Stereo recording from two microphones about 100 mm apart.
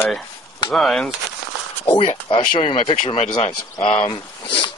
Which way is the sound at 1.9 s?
65° left (ahead or behind).